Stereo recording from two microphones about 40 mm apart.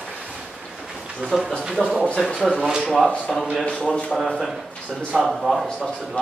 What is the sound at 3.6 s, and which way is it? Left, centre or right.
Speech, left.